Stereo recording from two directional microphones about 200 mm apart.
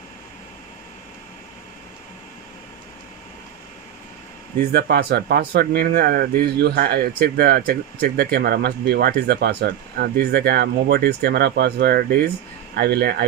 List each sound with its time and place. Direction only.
4.6 s speech: 50° right (ahead or behind)